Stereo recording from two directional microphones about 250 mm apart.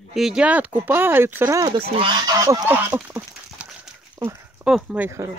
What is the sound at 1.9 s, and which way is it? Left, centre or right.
Goose, centre.